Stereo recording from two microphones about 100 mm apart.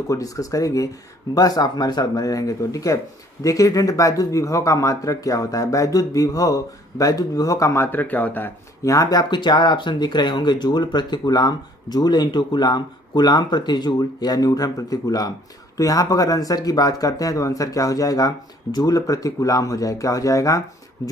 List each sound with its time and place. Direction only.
0.1 s speech: 35° left (ahead or behind); by 8.5 s 15° left (ahead or behind)
8.8 s speech: 35° left (ahead or behind)